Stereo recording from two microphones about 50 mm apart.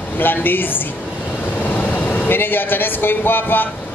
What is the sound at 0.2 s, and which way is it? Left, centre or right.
Speech, left.